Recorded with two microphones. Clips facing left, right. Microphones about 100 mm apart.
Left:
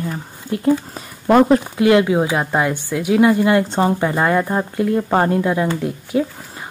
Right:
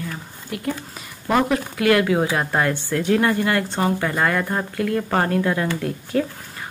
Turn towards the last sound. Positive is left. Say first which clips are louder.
# left 3 dB
turn(degrees=15)  # may be behind; listen again after turning